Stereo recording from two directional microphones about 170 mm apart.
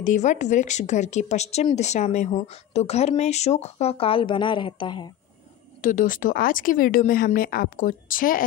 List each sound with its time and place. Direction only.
0.0 s speech: 45° left (ahead or behind); by 5.0 s 30° left (ahead or behind)
5.8 s speech: 50° left (ahead or behind)